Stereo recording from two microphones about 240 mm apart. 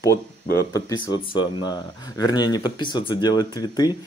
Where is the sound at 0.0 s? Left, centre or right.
Centre.